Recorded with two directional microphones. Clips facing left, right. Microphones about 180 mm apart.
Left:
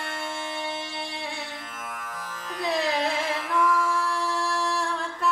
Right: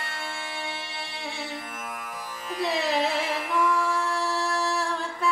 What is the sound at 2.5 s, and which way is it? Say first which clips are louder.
Music: even; 5° right (ahead or behind).